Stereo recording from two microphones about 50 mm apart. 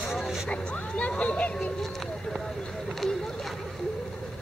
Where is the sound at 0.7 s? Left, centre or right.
Left.